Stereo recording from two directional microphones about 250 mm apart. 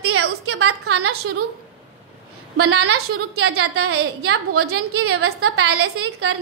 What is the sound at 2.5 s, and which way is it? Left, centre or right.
A woman's voice, right.